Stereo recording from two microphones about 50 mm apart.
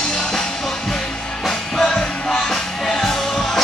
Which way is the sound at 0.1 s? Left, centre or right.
Centre.